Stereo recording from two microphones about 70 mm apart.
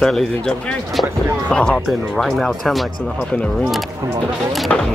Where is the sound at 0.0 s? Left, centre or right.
Centre.